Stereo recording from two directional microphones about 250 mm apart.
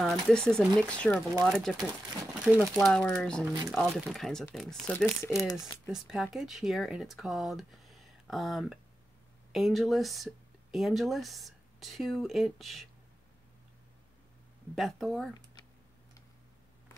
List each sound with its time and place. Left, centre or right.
0.0 s speech: centre
5.6 s speech: centre
14.8 s speech: centre